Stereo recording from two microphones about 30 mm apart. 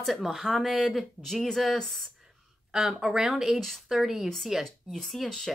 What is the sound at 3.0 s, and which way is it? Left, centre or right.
Speech, right.